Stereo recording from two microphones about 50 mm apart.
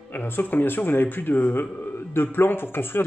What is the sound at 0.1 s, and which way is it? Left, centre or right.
Speech, left.